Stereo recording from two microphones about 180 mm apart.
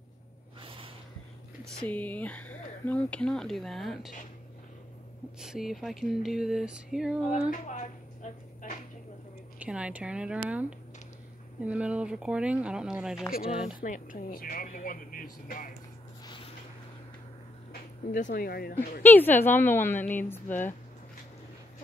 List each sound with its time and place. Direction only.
0.6 s snort: 30° right (ahead or behind)
1.8 s speech: 10° left (ahead or behind)
5.4 s speech: centre (ahead or behind)
7.5 s a sound: 40° left (ahead or behind)
9.6 s speech: 5° right (ahead or behind)
13.7 s speech: 50° left (ahead or behind)
18.1 s speech: 50° left (ahead or behind)
19.0 s a woman's voice: 10° left (ahead or behind)